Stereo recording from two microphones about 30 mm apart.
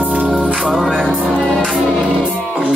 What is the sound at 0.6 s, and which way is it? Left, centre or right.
Music, centre.